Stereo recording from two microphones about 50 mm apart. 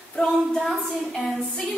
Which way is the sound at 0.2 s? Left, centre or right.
Left.